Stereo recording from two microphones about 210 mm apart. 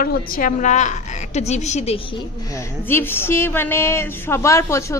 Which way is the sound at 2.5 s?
10° left (ahead or behind).